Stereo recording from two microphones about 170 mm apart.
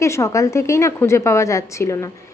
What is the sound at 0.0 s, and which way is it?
A woman's voice, 15° left (ahead or behind).